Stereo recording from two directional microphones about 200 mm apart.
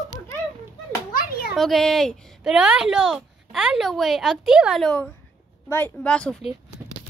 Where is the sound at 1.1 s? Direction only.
45° left (ahead or behind).